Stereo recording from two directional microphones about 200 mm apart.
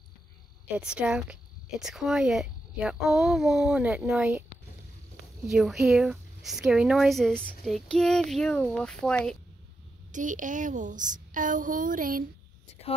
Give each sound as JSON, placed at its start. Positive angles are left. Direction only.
{"t": 0.7, "sound": "speech", "side_deg": -5}
{"t": 5.5, "sound": "speech", "side_deg": 0}
{"t": 10.1, "sound": "a woman's voice", "side_deg": -40}